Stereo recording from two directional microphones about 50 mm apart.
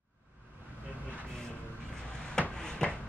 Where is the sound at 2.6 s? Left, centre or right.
Centre.